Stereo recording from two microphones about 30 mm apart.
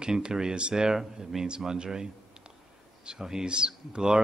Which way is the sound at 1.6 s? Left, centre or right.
Centre.